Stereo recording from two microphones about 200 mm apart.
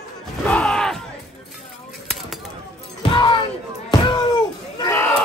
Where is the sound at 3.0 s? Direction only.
25° left (ahead or behind).